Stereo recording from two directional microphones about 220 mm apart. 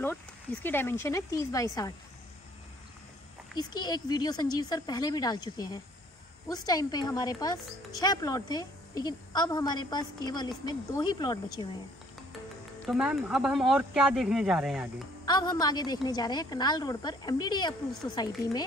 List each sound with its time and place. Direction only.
0.0 s a woman's voice: 10° left (ahead or behind)
3.5 s a woman's voice: 20° left (ahead or behind)
12.8 s speech: 5° right (ahead or behind)
15.2 s a woman's voice: 20° left (ahead or behind)